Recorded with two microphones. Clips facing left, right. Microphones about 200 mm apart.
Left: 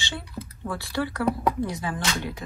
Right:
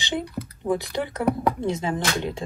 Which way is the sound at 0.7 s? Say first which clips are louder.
Right 4 dB; 20° right (ahead or behind).